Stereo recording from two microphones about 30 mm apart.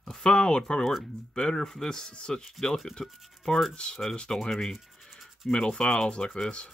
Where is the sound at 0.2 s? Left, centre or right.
Left.